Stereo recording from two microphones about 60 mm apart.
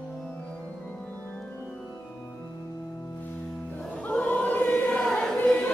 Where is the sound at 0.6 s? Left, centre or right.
Left.